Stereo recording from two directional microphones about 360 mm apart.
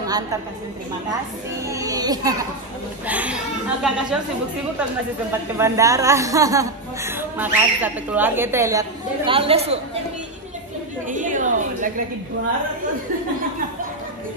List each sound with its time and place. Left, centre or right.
1.7 s a woman's voice: centre
5.6 s a woman's voice: centre
11.1 s a woman's voice: right